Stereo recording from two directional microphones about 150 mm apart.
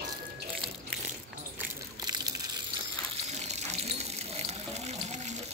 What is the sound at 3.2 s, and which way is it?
Water, 50° right (ahead or behind).